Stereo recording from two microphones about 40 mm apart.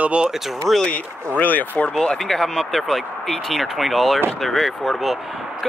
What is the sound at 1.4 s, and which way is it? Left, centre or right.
Speech, left.